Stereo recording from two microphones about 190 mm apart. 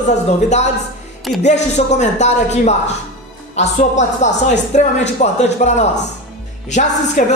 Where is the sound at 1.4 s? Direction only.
40° left (ahead or behind).